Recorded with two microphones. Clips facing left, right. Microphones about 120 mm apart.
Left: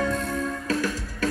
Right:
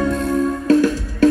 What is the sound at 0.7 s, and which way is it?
Music, 30° right (ahead or behind).